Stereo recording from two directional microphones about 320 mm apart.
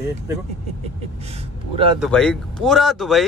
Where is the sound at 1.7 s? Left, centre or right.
Centre.